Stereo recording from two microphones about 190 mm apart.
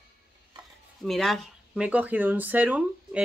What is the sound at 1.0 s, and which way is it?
Speech, centre (ahead or behind).